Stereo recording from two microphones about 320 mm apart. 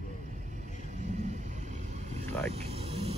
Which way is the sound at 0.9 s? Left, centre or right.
Right.